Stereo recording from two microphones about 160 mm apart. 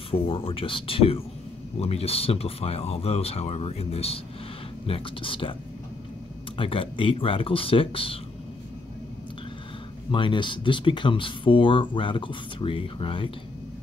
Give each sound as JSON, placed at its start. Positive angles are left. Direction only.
{"t": 0.1, "sound": "speech", "side_deg": 35}
{"t": 6.5, "sound": "speech", "side_deg": 35}
{"t": 10.1, "sound": "speech", "side_deg": 30}